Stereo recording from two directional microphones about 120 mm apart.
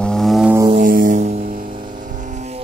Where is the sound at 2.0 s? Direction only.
90° right; by 2.6 s 75° right (ahead or behind).